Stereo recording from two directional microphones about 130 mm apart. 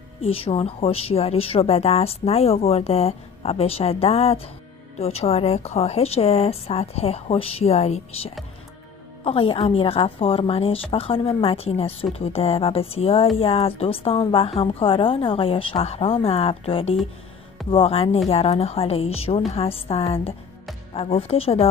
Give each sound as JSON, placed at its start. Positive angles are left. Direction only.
{"t": 0.2, "sound": "a woman's voice", "side_deg": 45}
{"t": 9.2, "sound": "a woman's voice", "side_deg": 45}